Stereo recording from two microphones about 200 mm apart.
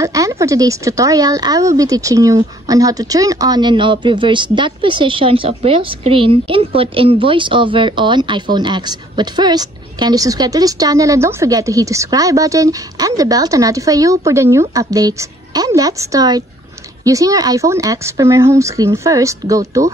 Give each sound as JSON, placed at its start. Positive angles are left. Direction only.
{"t": 0.0, "sound": "speech", "side_deg": -15}